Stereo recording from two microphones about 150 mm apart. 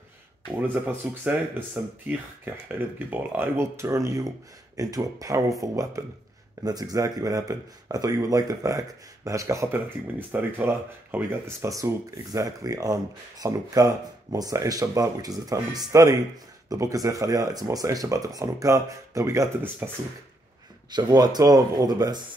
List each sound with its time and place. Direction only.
0.6 s speech: 10° right (ahead or behind)
20.9 s speech: 25° right (ahead or behind)